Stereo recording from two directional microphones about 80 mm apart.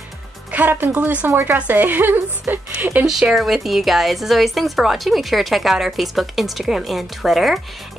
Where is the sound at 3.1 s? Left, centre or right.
Centre.